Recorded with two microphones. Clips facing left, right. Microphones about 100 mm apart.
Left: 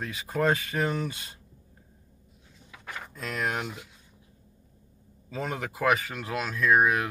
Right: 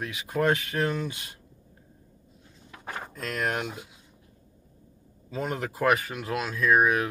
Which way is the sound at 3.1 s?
Centre (ahead or behind).